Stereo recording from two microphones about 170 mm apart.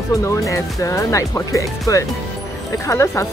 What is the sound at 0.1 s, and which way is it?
Speech, 20° left (ahead or behind).